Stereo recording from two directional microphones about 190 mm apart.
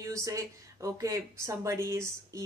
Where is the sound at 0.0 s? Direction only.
15° right (ahead or behind).